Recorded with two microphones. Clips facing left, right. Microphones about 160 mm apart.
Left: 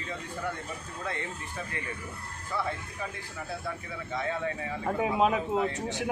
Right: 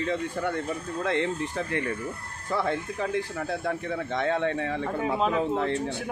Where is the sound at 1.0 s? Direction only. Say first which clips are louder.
Right 10 dB; 75° right (ahead or behind).